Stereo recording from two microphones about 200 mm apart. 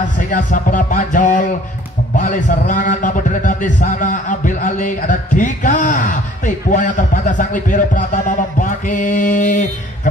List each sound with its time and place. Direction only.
0.3 s a man's voice: 40° left (ahead or behind)